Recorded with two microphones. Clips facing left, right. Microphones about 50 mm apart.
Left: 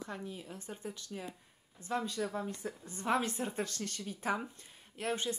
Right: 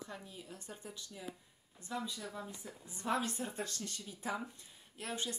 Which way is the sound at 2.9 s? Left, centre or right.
Left.